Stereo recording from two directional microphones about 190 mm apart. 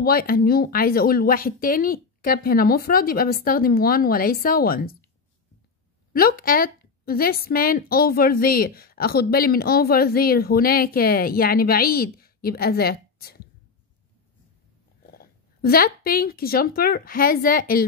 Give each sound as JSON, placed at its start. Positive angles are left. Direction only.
{"t": 0.0, "sound": "a woman's voice", "side_deg": 50}
{"t": 6.1, "sound": "a woman's voice", "side_deg": 50}
{"t": 15.1, "sound": "speech", "side_deg": 50}